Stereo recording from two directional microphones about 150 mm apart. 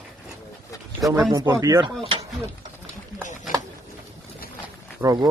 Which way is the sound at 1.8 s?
40° right (ahead or behind).